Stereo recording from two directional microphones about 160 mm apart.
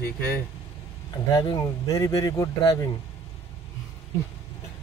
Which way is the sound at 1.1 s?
25° left (ahead or behind).